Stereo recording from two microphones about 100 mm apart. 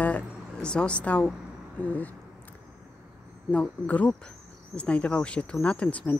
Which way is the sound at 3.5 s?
15° left (ahead or behind).